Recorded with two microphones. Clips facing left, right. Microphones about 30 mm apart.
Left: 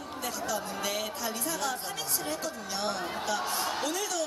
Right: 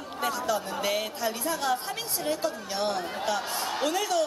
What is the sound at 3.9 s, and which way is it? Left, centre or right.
Speech, right.